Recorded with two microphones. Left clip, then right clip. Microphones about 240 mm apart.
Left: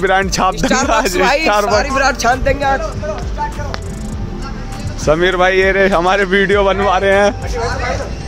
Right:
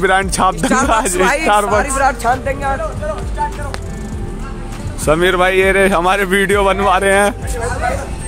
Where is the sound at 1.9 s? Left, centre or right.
Left.